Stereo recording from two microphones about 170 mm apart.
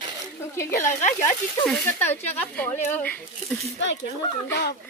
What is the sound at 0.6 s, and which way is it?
Speech, 15° left (ahead or behind).